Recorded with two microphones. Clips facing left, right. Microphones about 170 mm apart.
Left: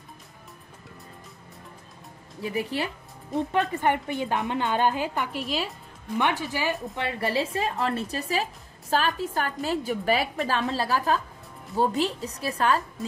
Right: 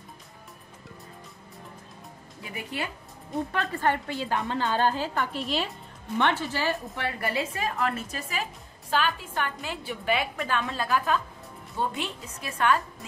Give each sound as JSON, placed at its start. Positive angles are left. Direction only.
{"t": 2.4, "sound": "a woman's voice", "side_deg": 30}
{"t": 3.5, "sound": "a woman's voice", "side_deg": 20}